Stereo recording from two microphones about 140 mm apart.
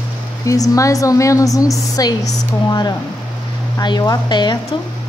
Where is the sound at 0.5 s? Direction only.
25° left (ahead or behind).